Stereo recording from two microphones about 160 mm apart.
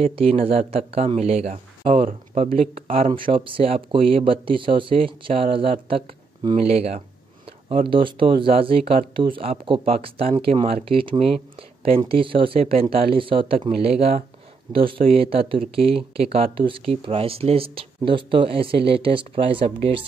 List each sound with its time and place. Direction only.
0.0 s speech: 40° right (ahead or behind)